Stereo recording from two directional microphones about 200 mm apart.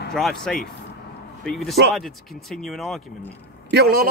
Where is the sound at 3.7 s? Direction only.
50° right (ahead or behind).